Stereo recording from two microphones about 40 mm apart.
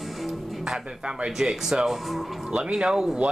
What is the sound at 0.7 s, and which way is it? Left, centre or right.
Speech, centre.